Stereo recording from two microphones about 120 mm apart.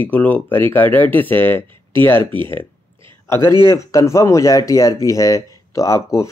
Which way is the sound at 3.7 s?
25° left (ahead or behind).